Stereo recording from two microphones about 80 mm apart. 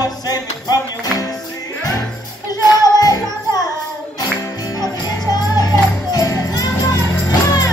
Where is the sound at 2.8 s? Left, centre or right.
Left.